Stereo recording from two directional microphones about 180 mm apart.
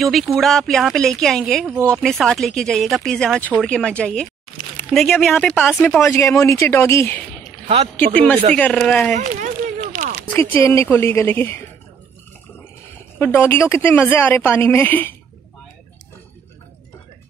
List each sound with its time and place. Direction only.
0.0 s speech: centre (ahead or behind)
9.1 s speech: 45° right (ahead or behind)
10.3 s speech: 10° left (ahead or behind)
13.2 s speech: 10° left (ahead or behind)